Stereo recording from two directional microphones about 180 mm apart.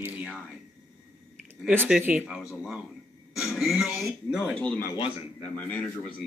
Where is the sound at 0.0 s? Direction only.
5° right (ahead or behind).